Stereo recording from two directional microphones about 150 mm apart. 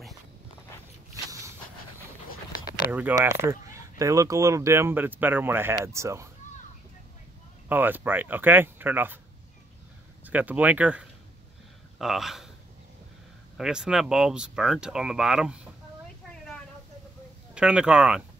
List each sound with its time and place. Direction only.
1.1 s walk: 20° right (ahead or behind)
2.9 s speech: 10° right (ahead or behind)
7.6 s speech: 10° right (ahead or behind)
10.2 s speech: 10° right (ahead or behind)
13.6 s speech: 5° right (ahead or behind)
17.6 s speech: 5° right (ahead or behind)